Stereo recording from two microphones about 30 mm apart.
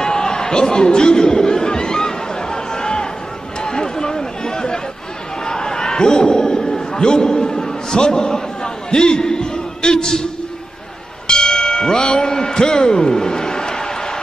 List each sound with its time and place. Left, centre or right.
0.0 s chatter: left
3.6 s run: left
5.4 s a sound: left
11.2 s tubular bells: left
12.1 s a man's voice: left